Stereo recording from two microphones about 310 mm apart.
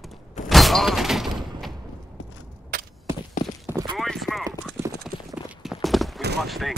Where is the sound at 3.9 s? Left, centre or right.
Centre.